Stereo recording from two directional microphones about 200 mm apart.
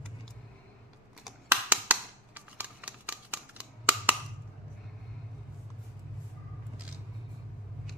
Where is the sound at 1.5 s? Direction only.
10° right (ahead or behind).